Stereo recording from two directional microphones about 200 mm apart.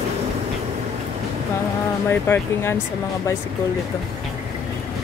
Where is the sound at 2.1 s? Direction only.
10° left (ahead or behind).